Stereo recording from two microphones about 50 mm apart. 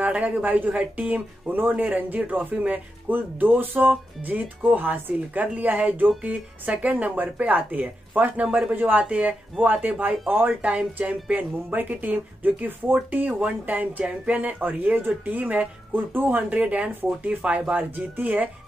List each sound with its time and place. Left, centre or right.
0.0 s speech: right
8.4 s speech: right
8.7 s speech: right
9.1 s speech: right
13.4 s speech: right
15.9 s speech: right
16.5 s speech: right
17.9 s speech: right